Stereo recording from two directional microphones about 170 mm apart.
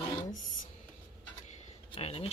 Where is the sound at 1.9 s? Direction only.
35° left (ahead or behind).